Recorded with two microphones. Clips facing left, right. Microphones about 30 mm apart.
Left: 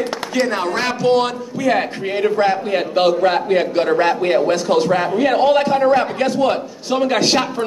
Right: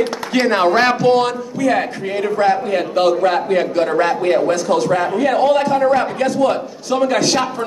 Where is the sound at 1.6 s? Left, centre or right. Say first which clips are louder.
Even; centre.